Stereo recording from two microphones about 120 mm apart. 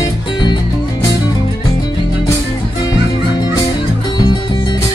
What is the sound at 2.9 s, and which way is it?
Music, 30° left (ahead or behind).